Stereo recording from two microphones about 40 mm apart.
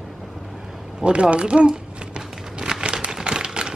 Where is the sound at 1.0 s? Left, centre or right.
Right.